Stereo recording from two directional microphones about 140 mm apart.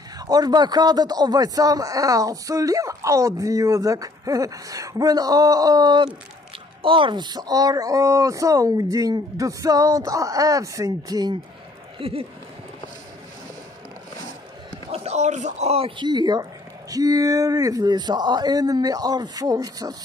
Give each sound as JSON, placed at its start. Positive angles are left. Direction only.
{"t": 0.3, "sound": "a man's voice", "side_deg": -30}
{"t": 12.0, "sound": "speech", "side_deg": -45}
{"t": 14.9, "sound": "speech", "side_deg": -50}
{"t": 16.1, "sound": "a man's voice", "side_deg": -30}